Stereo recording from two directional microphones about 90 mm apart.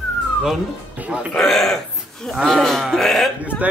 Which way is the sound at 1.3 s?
5° left (ahead or behind).